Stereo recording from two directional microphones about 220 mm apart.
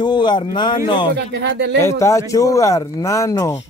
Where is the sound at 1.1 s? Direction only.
50° right (ahead or behind).